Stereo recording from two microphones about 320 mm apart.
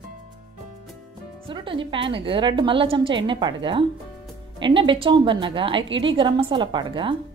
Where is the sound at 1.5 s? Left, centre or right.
Centre.